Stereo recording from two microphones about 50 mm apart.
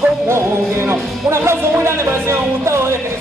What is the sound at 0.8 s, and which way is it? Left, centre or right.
Speech, right.